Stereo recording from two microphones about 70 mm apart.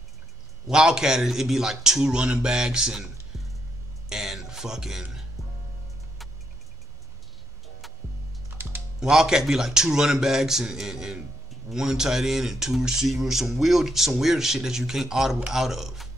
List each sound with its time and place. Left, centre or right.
0.7 s speech: centre
4.1 s a sound: centre
8.5 s typing: right
9.1 s speech: centre